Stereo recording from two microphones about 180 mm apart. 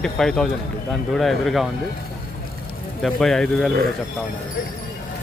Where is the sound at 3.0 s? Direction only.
Centre (ahead or behind).